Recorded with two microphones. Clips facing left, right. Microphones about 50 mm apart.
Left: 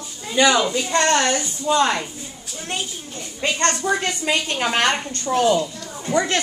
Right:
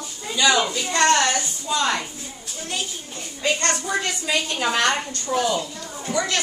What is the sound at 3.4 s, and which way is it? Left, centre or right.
A woman's voice, left.